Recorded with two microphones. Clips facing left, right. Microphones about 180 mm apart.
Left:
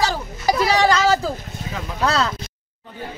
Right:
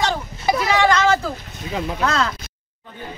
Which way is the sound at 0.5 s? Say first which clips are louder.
Even; 35° left (ahead or behind).